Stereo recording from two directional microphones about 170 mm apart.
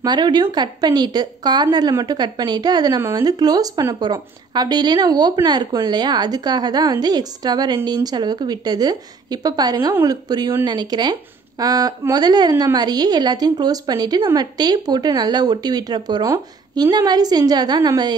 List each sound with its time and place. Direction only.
0.0 s a woman's voice: 25° right (ahead or behind)